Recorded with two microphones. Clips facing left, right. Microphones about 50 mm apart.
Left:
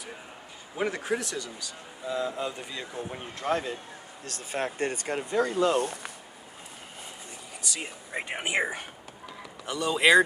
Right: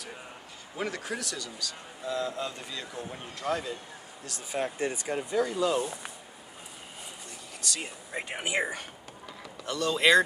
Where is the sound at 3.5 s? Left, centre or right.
Left.